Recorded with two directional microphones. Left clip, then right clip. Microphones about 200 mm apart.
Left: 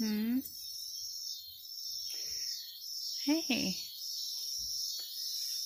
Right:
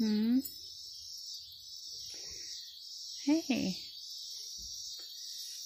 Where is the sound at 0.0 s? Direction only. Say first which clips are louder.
Right 3 dB; 10° right (ahead or behind).